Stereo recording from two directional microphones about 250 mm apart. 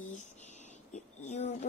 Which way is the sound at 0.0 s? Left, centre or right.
Left.